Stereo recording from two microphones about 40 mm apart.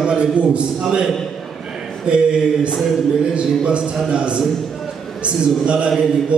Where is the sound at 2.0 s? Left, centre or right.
Right.